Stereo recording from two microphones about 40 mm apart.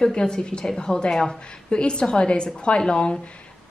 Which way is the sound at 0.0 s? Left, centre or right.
Centre.